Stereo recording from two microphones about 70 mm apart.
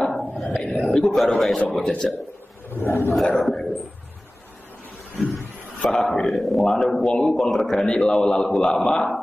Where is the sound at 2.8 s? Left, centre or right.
Left.